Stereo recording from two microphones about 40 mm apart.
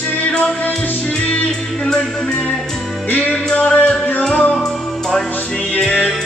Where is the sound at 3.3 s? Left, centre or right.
Left.